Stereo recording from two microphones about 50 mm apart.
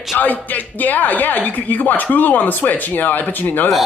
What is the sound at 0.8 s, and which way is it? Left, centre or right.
Speech, left.